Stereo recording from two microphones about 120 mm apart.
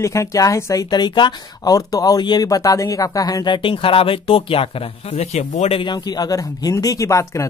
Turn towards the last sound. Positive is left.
turn(degrees=25)  # may be behind; listen again after turning